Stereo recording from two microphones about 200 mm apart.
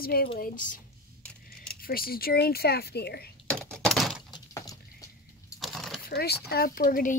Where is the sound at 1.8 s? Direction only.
45° left (ahead or behind).